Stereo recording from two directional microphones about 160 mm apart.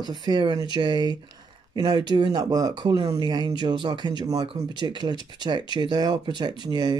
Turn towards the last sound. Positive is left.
turn(degrees=-25)  # may be behind; listen again after turning